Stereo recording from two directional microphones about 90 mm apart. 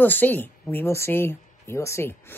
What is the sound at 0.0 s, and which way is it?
Speech, 20° left (ahead or behind).